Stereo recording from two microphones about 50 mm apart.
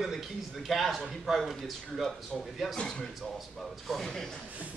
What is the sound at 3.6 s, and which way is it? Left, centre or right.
Speech, centre.